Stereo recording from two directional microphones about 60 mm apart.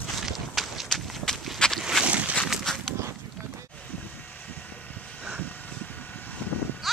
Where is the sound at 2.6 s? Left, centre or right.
Centre.